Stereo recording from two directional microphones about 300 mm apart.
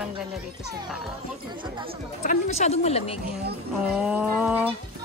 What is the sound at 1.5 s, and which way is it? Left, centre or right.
Speech, centre.